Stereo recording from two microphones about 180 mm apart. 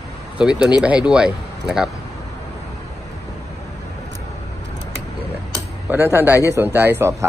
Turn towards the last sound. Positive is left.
turn(degrees=-15)  # may be behind; listen again after turning